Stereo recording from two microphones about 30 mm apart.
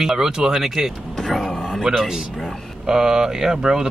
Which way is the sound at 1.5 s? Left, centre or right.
Left.